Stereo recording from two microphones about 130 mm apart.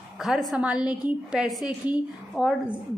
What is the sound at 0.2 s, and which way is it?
A woman's voice, centre (ahead or behind).